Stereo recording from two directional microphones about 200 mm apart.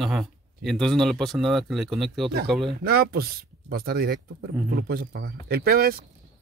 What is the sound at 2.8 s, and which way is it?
Speech, 50° right (ahead or behind).